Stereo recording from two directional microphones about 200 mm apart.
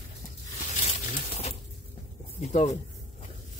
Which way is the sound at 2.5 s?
35° left (ahead or behind).